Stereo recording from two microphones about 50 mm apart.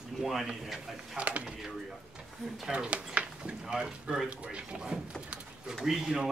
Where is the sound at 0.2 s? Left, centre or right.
Centre.